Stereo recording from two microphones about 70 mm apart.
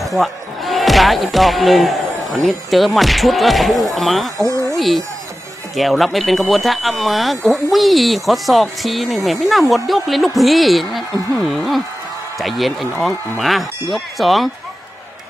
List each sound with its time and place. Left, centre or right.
0.0 s speech: centre